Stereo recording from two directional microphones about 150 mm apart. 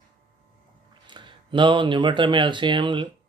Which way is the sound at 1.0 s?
30° right (ahead or behind).